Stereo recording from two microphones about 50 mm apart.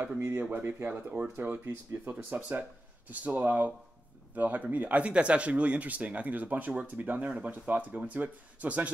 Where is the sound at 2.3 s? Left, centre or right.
Right.